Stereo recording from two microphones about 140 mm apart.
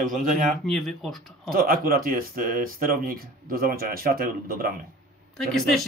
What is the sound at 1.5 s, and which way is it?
Speech, 90° right.